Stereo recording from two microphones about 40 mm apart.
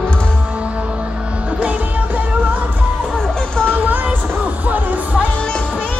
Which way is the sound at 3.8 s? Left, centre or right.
Right.